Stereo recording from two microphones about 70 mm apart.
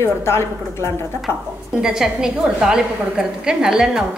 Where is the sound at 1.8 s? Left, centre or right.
Centre.